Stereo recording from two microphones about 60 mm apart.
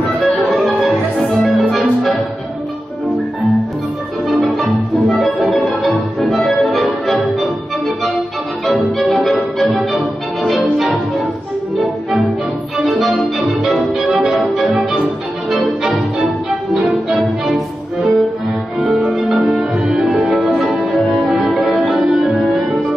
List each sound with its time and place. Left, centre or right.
0.7 s steelpan: centre
4.3 s music: centre
12.7 s music: centre